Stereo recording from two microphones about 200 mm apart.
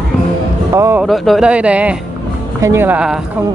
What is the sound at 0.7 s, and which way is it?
Speech, 15° right (ahead or behind).